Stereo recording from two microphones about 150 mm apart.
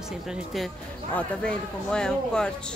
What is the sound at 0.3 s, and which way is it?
A woman's voice, centre (ahead or behind).